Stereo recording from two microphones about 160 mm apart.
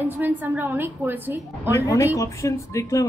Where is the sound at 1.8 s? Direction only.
20° left (ahead or behind).